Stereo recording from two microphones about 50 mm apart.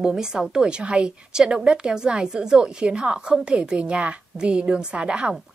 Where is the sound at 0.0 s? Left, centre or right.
Centre.